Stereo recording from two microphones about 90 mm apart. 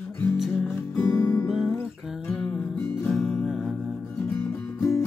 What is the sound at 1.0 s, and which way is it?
Music, 30° left (ahead or behind).